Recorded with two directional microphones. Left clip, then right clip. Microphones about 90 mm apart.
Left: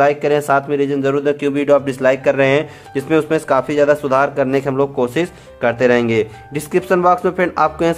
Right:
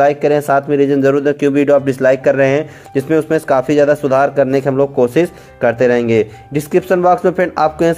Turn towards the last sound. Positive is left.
turn(degrees=-30)  # may be behind; listen again after turning